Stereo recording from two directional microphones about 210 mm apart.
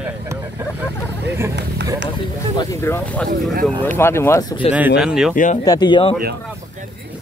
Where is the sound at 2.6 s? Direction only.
15° left (ahead or behind).